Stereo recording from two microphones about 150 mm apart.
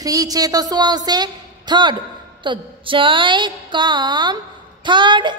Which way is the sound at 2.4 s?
35° right (ahead or behind).